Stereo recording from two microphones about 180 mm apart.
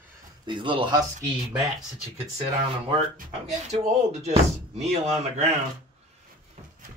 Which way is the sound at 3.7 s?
40° right (ahead or behind).